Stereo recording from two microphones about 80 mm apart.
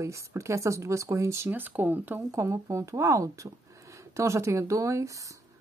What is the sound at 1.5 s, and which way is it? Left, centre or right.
Speech, right.